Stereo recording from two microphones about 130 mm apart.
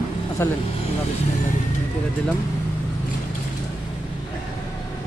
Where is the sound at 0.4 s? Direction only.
20° left (ahead or behind).